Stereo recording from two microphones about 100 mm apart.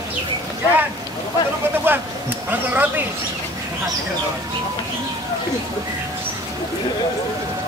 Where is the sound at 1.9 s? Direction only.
20° right (ahead or behind).